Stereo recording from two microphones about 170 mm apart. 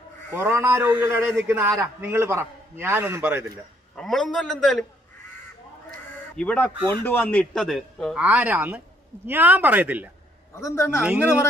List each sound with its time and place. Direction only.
0.3 s speech: 15° right (ahead or behind)
3.9 s a man's voice: 5° left (ahead or behind)
6.3 s a man's voice: 10° left (ahead or behind); by 10.1 s 10° right (ahead or behind)
10.5 s a man's voice: 15° left (ahead or behind)